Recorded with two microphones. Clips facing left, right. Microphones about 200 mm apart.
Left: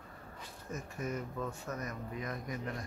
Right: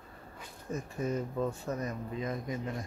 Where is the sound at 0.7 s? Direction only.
30° right (ahead or behind).